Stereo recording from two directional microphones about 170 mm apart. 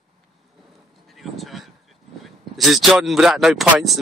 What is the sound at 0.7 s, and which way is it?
Speech, centre (ahead or behind).